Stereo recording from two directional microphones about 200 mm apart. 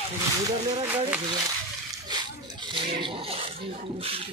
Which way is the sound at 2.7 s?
25° right (ahead or behind).